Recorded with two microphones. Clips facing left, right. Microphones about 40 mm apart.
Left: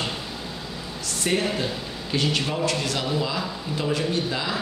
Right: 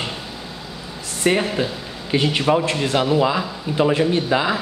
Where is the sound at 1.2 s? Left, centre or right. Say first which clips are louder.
Right 5 dB; right.